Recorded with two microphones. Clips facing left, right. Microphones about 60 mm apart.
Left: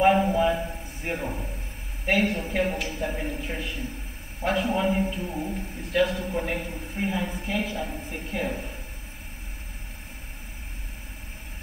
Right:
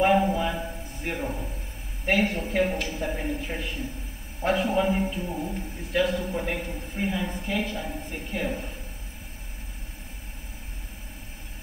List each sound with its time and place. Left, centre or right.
0.0 s a sound: centre
1.1 s a man's voice: centre
2.0 s a man's voice: centre